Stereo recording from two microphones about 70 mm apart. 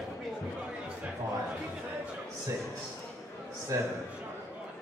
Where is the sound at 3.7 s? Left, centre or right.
Right.